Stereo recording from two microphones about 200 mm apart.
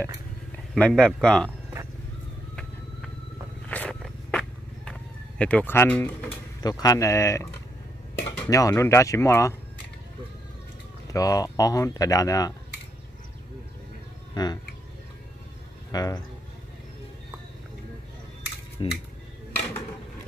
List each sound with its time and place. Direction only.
0.7 s speech: 5° left (ahead or behind)
3.6 s a sound: 5° left (ahead or behind)
5.4 s speech: 5° left (ahead or behind)
11.1 s speech: 15° left (ahead or behind)
14.3 s speech: 20° left (ahead or behind)
15.9 s speech: 20° left (ahead or behind)
18.8 s a sound: 25° left (ahead or behind)